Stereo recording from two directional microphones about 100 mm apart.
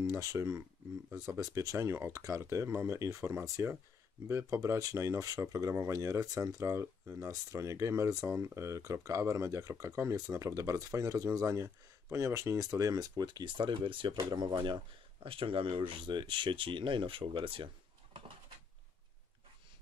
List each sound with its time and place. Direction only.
0.0 s speech: 35° right (ahead or behind); by 14.1 s 60° right (ahead or behind)
14.1 s speech: 45° right (ahead or behind)
15.2 s speech: 65° right (ahead or behind)